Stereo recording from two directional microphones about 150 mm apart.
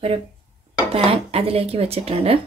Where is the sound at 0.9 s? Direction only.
40° right (ahead or behind).